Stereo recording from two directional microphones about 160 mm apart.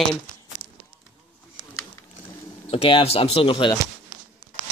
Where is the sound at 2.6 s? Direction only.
35° left (ahead or behind).